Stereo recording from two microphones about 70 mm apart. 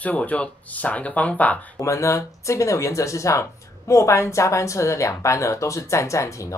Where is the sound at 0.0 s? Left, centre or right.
Left.